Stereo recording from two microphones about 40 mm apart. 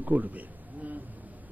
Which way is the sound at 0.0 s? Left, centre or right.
Right.